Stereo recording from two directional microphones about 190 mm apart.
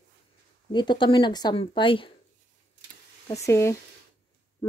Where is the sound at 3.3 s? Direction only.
15° left (ahead or behind).